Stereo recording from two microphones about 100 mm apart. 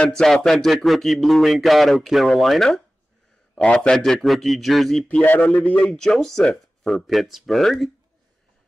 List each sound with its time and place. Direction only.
0.2 s speech: 5° left (ahead or behind)
3.5 s speech: 10° left (ahead or behind)
5.2 s a man's voice: 20° left (ahead or behind); by 7.9 s centre (ahead or behind)